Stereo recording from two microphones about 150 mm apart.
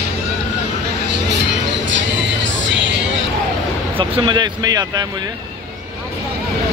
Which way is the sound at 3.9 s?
35° right (ahead or behind).